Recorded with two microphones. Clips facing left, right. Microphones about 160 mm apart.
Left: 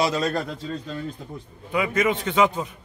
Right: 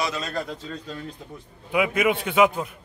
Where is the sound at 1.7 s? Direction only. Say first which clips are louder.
Right 1 dB; 10° right (ahead or behind).